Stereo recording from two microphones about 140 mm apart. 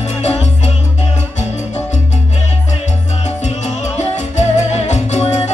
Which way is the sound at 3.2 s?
55° left (ahead or behind).